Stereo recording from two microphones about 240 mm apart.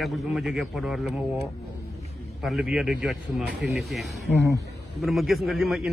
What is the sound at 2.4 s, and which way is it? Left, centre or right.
A man's voice, centre.